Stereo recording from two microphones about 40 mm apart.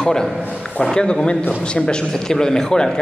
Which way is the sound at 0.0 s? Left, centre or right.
Centre.